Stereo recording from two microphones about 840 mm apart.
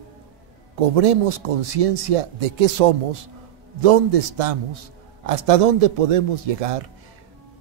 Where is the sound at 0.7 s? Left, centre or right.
Right.